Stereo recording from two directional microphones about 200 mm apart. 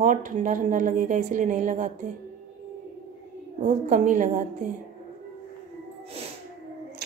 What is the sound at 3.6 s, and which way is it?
A woman's voice, 40° right (ahead or behind).